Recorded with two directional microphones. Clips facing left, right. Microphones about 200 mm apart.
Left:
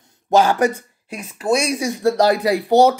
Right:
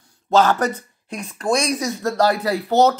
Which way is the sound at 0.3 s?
15° left (ahead or behind).